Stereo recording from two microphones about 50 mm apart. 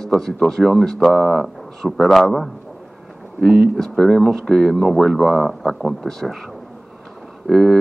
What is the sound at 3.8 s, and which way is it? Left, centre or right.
Speech, centre.